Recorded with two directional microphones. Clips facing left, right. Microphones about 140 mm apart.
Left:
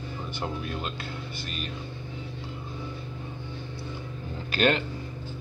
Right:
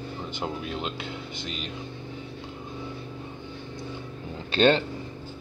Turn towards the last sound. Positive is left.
turn(degrees=-30)  # may be behind; listen again after turning